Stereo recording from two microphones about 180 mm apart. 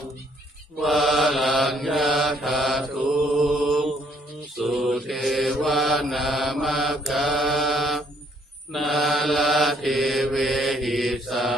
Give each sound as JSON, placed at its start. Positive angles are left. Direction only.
{"t": 0.7, "sound": "mantra", "side_deg": 0}